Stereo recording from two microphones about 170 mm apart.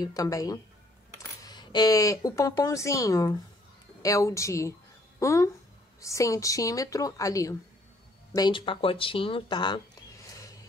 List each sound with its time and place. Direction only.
0.0 s a woman's voice: 20° left (ahead or behind)